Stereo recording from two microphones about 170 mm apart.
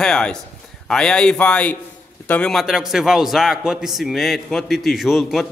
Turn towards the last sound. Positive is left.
turn(degrees=0)  # may be behind; listen again after turning